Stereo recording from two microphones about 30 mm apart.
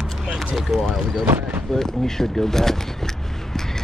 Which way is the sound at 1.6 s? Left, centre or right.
Centre.